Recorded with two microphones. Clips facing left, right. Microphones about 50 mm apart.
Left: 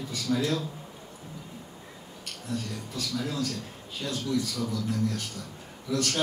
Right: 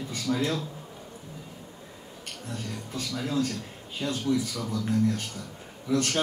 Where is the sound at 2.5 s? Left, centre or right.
Right.